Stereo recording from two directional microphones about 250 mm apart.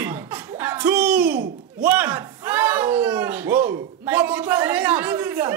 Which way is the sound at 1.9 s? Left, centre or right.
Centre.